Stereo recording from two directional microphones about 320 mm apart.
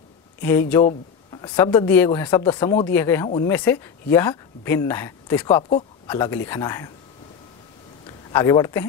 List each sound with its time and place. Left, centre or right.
0.4 s speech: centre
5.6 s speech: centre
6.0 s speech: centre
8.3 s speech: centre